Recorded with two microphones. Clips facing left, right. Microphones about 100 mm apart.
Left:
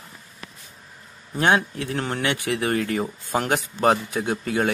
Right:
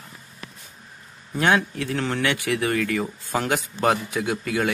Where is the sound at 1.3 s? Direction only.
30° left (ahead or behind).